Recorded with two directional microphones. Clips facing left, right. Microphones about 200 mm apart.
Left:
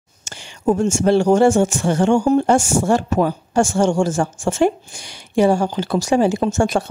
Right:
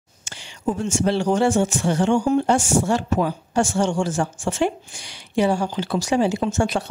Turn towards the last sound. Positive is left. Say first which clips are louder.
# left 4 dB
turn(degrees=50)  # may be behind; listen again after turning